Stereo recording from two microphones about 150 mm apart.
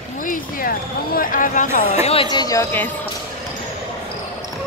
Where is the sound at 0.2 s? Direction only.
65° left (ahead or behind); by 2.2 s 45° left (ahead or behind).